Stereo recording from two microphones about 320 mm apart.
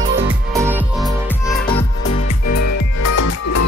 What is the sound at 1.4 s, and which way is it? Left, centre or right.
Music, centre.